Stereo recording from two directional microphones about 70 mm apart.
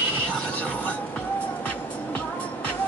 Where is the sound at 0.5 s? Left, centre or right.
Left.